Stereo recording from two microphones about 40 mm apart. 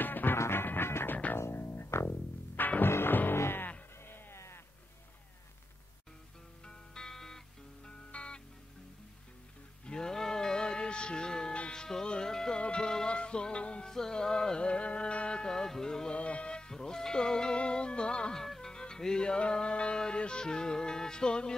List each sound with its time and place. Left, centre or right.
0.0 s music: left
1.3 s music: left
2.0 s music: left
2.8 s music: left
3.3 s music: left
4.0 s a sound: left
6.6 s music: centre
8.1 s music: left
9.8 s music: centre
13.8 s music: centre
16.2 s music: left
18.4 s music: centre